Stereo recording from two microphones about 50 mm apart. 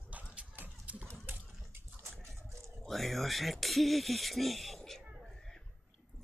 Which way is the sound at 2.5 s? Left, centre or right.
Right.